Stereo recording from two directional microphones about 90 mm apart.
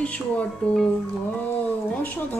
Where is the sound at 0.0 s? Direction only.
15° left (ahead or behind).